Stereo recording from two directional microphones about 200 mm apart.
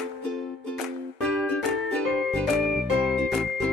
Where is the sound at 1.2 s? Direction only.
5° left (ahead or behind).